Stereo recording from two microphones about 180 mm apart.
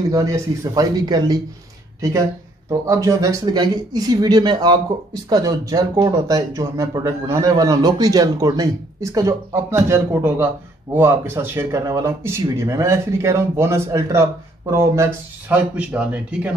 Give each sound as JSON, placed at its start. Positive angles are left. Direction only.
{"t": 0.1, "sound": "speech", "side_deg": -20}